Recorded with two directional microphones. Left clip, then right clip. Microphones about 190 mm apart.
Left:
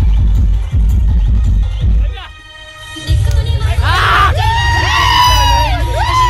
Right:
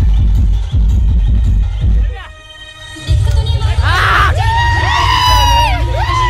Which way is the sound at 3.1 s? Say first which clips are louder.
Right 3 dB; 30° left (ahead or behind).